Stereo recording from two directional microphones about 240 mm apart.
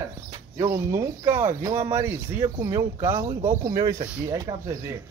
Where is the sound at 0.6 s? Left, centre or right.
Centre.